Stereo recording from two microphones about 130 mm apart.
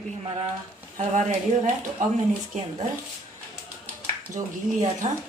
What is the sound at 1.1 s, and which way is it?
Speech, 70° right (ahead or behind).